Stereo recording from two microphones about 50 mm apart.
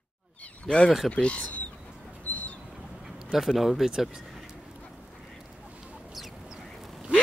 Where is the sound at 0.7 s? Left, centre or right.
Centre.